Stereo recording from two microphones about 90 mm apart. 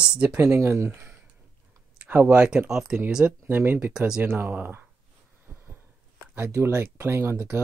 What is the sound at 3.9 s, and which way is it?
Speech, 10° right (ahead or behind).